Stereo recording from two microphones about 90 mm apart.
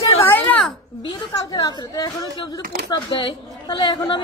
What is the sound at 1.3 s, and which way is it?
Speech, 45° left (ahead or behind).